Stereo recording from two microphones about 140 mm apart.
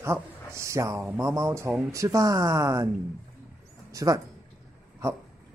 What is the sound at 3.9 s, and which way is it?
Speech, 25° right (ahead or behind).